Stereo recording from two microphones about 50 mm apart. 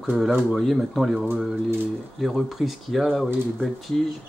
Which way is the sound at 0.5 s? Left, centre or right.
Centre.